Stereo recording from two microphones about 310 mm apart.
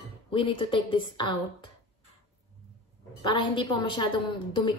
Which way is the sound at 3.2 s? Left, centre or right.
Centre.